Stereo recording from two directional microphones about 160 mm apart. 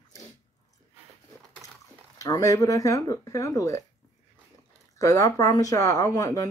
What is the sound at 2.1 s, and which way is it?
Speech, 20° left (ahead or behind).